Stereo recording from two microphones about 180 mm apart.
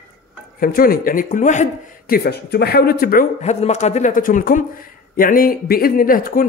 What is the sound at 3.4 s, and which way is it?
A man's voice, 40° left (ahead or behind).